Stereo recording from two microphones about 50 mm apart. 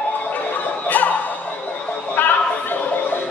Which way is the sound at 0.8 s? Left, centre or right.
Left.